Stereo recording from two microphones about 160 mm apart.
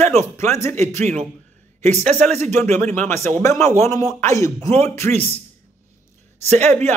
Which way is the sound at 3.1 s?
15° left (ahead or behind).